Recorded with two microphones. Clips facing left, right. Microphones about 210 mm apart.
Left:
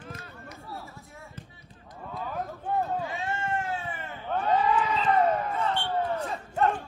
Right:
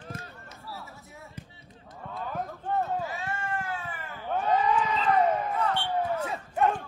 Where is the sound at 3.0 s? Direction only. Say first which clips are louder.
Left 2 dB; 25° left (ahead or behind).